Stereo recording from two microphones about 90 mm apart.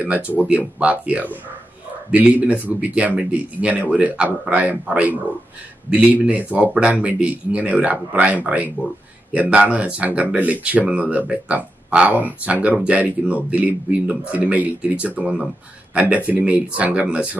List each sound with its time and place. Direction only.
0.0 s speech: 15° right (ahead or behind)